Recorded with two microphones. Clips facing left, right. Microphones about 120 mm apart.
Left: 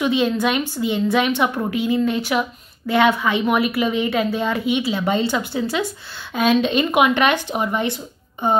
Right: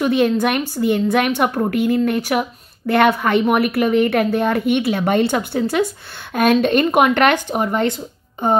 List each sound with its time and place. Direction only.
0.0 s a woman's voice: 50° right (ahead or behind)